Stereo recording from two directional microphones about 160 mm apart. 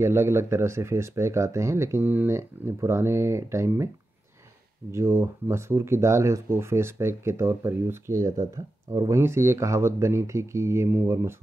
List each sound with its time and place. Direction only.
0.0 s speech: 15° right (ahead or behind)
4.9 s speech: 15° right (ahead or behind)